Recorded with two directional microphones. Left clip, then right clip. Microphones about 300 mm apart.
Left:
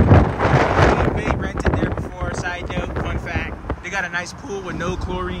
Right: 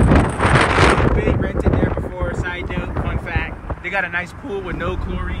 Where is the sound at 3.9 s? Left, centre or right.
Centre.